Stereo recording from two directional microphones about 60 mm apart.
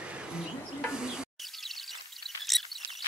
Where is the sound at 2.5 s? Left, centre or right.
Centre.